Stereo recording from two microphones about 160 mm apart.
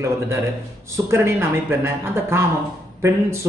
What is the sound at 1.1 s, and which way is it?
Speech, 15° right (ahead or behind).